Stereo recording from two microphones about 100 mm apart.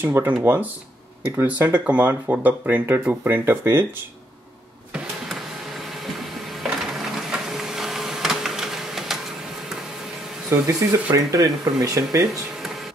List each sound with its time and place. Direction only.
0.0 s speech: 20° right (ahead or behind)
6.6 s printer: centre (ahead or behind)
10.5 s speech: 25° right (ahead or behind)